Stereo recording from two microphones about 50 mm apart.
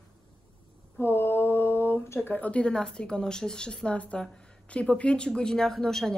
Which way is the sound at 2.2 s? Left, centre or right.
Left.